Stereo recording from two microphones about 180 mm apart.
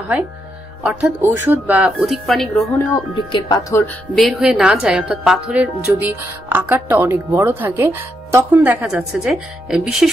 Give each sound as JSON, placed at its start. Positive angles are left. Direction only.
{"t": 0.8, "sound": "speech", "side_deg": -10}
{"t": 2.9, "sound": "speech", "side_deg": 25}
{"t": 3.8, "sound": "a woman's voice", "side_deg": 0}